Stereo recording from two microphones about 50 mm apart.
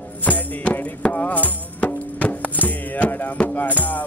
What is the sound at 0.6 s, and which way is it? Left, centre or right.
Music, left.